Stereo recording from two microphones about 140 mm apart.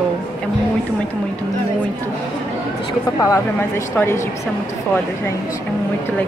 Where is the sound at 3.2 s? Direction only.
20° left (ahead or behind).